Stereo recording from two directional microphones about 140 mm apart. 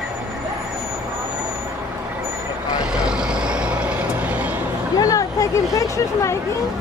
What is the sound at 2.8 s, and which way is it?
Vehicle, 5° right (ahead or behind).